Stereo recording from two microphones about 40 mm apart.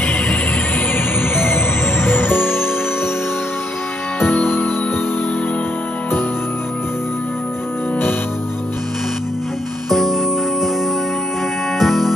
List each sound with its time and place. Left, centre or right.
0.9 s music: left
4.5 s music: left
9.8 s music: centre
11.8 s music: centre